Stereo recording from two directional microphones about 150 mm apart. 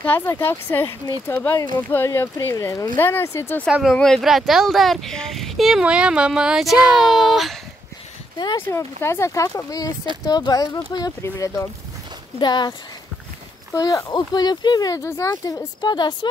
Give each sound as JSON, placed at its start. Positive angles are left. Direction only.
{"t": 0.0, "sound": "speech", "side_deg": 15}
{"t": 3.6, "sound": "speech", "side_deg": 0}
{"t": 8.4, "sound": "speech", "side_deg": 30}
{"t": 8.6, "sound": "speech", "side_deg": 15}
{"t": 13.7, "sound": "speech", "side_deg": 25}